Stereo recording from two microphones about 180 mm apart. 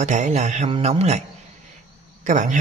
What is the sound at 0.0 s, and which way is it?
Speech, 40° right (ahead or behind).